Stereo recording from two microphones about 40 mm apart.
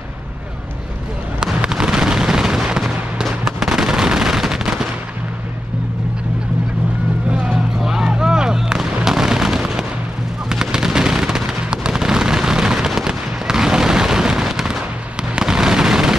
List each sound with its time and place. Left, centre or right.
1.6 s a sound: centre
3.5 s fireworks: centre
7.8 s artillery fire: centre
10.5 s fireworks: centre